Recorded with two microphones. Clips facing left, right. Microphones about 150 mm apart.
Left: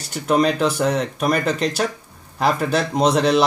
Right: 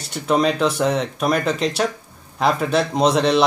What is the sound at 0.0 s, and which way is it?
Speech, centre (ahead or behind).